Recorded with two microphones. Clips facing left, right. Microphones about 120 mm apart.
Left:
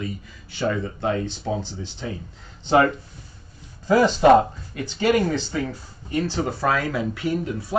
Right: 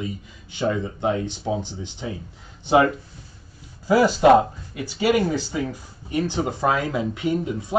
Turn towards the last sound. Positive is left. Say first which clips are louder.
# right 1 dB
turn(degrees=-20)  # may be behind; listen again after turning